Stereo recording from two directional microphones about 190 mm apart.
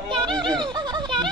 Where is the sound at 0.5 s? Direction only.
25° right (ahead or behind).